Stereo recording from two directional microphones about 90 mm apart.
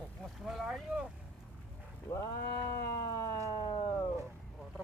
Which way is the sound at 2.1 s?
45° left (ahead or behind).